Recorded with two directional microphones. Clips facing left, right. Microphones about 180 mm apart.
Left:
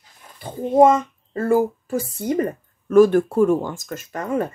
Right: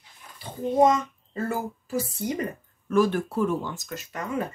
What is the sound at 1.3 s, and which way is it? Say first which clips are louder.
Speech: left 11 dB; 50° left (ahead or behind).